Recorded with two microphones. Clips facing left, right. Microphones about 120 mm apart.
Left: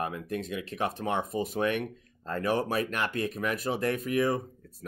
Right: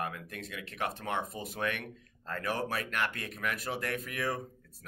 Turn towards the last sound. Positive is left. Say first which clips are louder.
# left 8 dB
turn(degrees=25)  # may be behind; listen again after turning